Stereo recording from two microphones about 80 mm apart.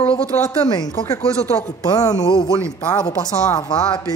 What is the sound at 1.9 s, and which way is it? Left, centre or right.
Speech, left.